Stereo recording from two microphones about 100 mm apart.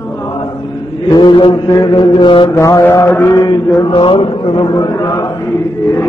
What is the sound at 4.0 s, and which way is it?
Mantra, 60° left (ahead or behind).